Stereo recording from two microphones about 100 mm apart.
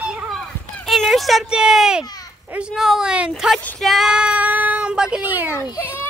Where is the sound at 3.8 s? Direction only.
Centre (ahead or behind).